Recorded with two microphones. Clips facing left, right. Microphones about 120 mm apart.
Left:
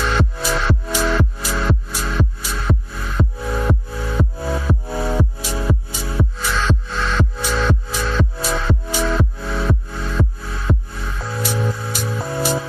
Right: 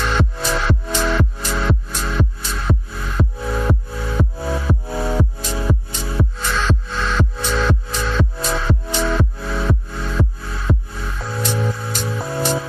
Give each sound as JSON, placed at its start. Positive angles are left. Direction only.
{"t": 0.2, "sound": "music", "side_deg": 5}